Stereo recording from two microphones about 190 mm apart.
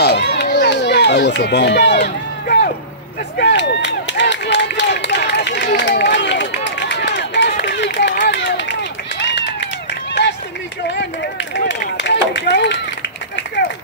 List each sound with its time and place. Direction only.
0.0 s run: 60° left (ahead or behind)
3.3 s run: 65° left (ahead or behind)
10.9 s run: 65° left (ahead or behind)